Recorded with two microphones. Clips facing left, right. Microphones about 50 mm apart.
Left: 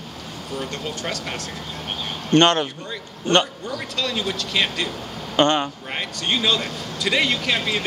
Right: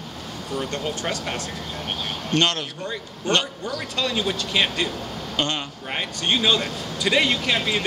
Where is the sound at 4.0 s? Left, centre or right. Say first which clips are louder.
Right 1 dB; centre.